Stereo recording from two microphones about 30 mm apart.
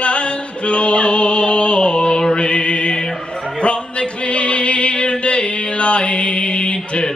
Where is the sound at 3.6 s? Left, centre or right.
Left.